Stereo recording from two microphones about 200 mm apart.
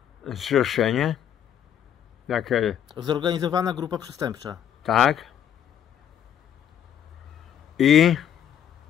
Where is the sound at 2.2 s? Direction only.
Centre (ahead or behind).